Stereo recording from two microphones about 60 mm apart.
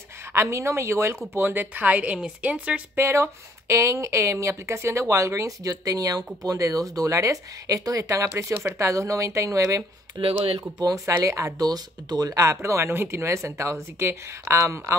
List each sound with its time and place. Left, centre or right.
0.3 s speech: right
1.3 s a woman's voice: right
3.0 s speech: right
10.8 s speech: right